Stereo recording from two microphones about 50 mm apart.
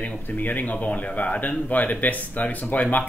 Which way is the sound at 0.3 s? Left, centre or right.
Left.